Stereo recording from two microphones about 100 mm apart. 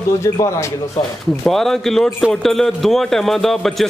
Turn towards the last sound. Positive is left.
turn(degrees=5)  # may be behind; listen again after turning